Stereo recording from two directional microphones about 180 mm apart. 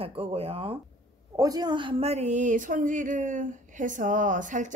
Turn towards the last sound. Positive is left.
turn(degrees=-45)  # may be behind; listen again after turning